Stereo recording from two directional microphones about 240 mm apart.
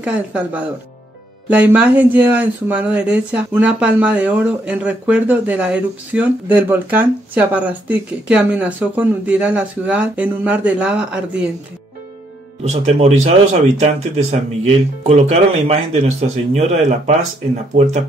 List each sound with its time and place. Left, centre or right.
0.0 s speech: centre
12.6 s speech: right